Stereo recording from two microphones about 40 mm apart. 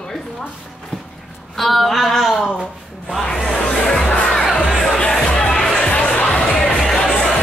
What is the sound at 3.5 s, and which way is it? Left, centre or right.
Music, left.